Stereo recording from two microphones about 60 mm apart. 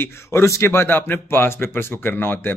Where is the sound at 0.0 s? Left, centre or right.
Left.